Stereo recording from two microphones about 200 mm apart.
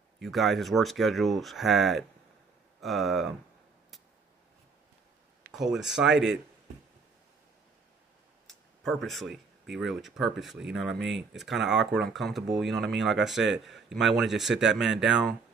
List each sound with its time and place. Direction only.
0.2 s speech: centre (ahead or behind)
5.5 s speech: centre (ahead or behind)
8.5 s speech: centre (ahead or behind)
11.0 s speech: 60° right (ahead or behind)
11.3 s speech: centre (ahead or behind)